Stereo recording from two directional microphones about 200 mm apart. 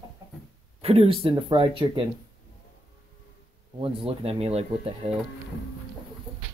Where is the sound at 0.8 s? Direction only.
30° right (ahead or behind).